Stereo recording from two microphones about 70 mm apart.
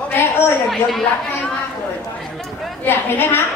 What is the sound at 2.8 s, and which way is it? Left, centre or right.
Speech, left.